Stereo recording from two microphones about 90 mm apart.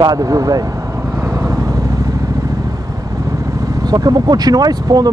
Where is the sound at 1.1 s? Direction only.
35° right (ahead or behind).